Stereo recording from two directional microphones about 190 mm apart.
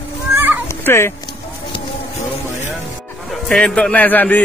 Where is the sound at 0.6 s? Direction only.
15° left (ahead or behind).